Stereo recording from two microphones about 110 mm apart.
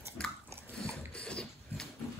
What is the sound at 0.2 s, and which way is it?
Dog, 10° left (ahead or behind).